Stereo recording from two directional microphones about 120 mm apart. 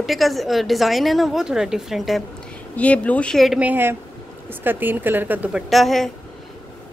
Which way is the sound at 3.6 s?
15° right (ahead or behind).